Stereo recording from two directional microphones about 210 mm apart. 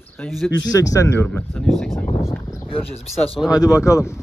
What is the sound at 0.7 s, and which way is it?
Speech, 15° left (ahead or behind).